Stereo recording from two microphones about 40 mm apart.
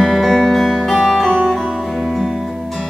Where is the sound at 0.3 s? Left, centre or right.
Centre.